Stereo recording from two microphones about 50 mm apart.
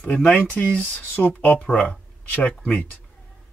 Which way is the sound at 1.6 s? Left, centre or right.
Left.